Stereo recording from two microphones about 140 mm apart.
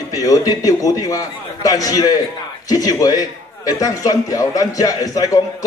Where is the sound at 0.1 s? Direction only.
25° left (ahead or behind).